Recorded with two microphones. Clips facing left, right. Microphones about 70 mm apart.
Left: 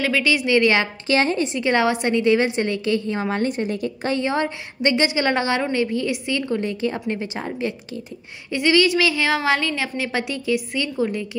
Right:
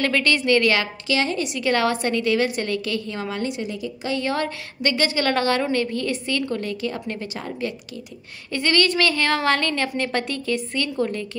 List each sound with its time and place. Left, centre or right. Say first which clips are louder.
0.0 s a woman's voice: left 1 dB; centre
0.6 s a woman's voice: left 2 dB; left
3.3 s a woman's voice: left 5 dB; left
4.1 s a woman's voice: left 1 dB; left
8.5 s a woman's voice: left 3 dB; centre